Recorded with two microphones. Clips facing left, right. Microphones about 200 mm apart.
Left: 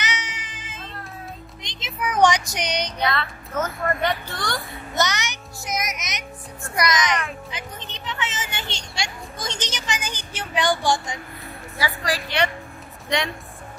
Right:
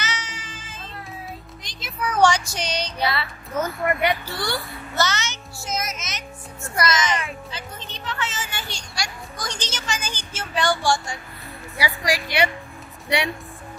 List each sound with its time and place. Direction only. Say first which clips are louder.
0.0 s music: left 1 dB; 20° left (ahead or behind)
1.6 s a sound: even; 20° left (ahead or behind)
3.1 s speech: left 1 dB; 10° right (ahead or behind)
4.6 s a child's voice: even; 15° left (ahead or behind)
7.5 s a sound: even; 20° left (ahead or behind)
11.8 s speech: right 2 dB; 15° right (ahead or behind)